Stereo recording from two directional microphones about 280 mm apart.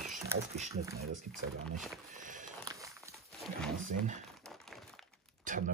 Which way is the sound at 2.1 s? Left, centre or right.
Right.